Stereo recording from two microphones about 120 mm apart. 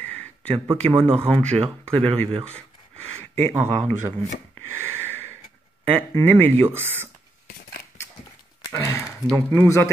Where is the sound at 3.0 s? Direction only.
60° right (ahead or behind).